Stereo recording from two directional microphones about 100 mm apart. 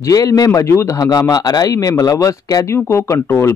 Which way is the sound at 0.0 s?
35° left (ahead or behind).